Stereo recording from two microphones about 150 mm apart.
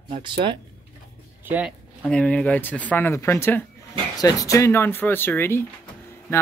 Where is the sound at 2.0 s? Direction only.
5° left (ahead or behind).